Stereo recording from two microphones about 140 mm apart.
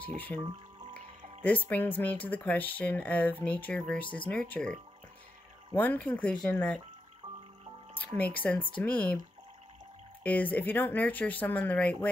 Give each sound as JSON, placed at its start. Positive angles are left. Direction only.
{"t": 0.0, "sound": "speech", "side_deg": 10}
{"t": 0.4, "sound": "music", "side_deg": -35}
{"t": 1.4, "sound": "speech", "side_deg": 10}
{"t": 5.8, "sound": "speech", "side_deg": 10}
{"t": 8.2, "sound": "speech", "side_deg": 10}
{"t": 10.2, "sound": "speech", "side_deg": 10}